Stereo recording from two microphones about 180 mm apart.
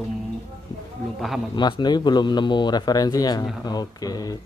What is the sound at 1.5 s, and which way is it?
A man's voice, 25° left (ahead or behind).